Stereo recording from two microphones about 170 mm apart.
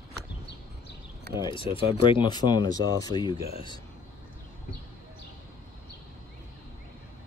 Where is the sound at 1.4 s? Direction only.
30° left (ahead or behind).